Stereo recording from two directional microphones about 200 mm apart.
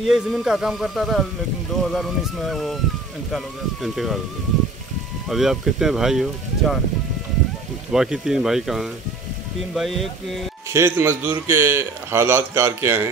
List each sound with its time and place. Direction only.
0.0 s speech: centre (ahead or behind)
5.3 s speech: centre (ahead or behind)
7.9 s speech: 5° right (ahead or behind)
10.7 s a man's voice: 15° right (ahead or behind)